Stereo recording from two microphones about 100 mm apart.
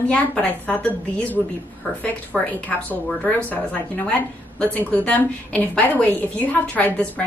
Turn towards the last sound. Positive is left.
turn(degrees=15)  # may be behind; listen again after turning